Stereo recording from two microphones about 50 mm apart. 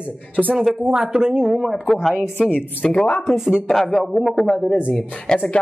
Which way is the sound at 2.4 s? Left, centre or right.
Left.